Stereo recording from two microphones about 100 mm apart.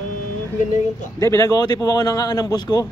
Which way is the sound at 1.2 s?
35° left (ahead or behind).